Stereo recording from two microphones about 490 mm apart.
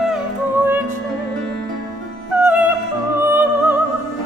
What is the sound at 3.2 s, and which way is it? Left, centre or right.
Music, centre.